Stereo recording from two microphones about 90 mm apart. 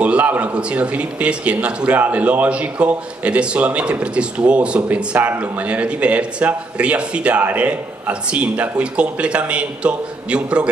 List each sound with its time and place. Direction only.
0.0 s a man's voice: 15° right (ahead or behind)